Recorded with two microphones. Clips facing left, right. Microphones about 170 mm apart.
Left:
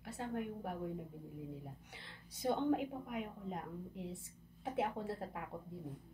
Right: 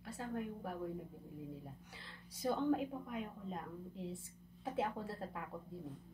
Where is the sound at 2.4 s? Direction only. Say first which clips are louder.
Left 1 dB; 25° left (ahead or behind).